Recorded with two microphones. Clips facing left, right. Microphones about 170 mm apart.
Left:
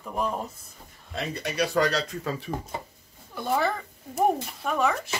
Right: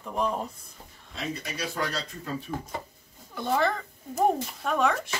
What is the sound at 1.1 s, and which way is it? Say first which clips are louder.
Speech: left 5 dB; 70° left (ahead or behind).